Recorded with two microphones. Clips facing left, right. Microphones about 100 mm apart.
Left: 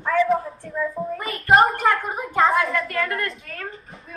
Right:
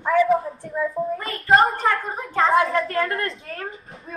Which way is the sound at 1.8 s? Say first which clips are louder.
Left 2 dB; 5° left (ahead or behind).